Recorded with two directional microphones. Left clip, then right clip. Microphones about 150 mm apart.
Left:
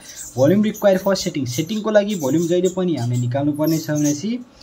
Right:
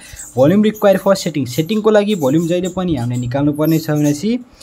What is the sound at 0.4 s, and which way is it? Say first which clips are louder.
Speech: right 4 dB; 55° right (ahead or behind).